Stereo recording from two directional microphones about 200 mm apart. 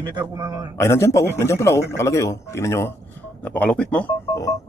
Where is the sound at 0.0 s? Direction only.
20° right (ahead or behind).